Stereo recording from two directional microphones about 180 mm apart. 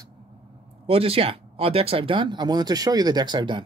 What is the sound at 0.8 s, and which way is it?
Speech, 30° right (ahead or behind).